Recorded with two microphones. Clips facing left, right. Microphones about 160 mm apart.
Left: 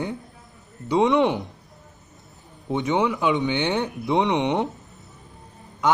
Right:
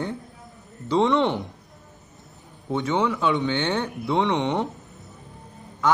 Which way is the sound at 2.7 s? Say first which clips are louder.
Left 1 dB; 15° left (ahead or behind).